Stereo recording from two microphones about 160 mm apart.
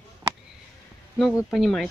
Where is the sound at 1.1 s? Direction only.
Centre (ahead or behind).